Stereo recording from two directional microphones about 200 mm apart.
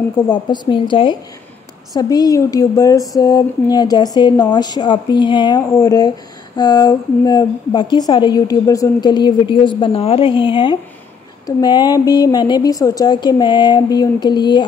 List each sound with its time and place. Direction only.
0.3 s a woman's voice: 25° left (ahead or behind)